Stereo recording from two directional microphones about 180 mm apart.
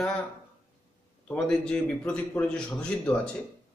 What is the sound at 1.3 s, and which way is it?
Speech, 5° left (ahead or behind).